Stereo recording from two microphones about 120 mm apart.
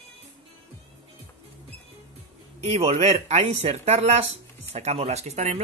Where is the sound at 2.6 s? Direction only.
60° right (ahead or behind).